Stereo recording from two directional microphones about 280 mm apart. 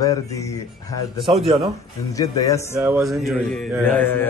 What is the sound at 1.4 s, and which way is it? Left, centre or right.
Speech, centre.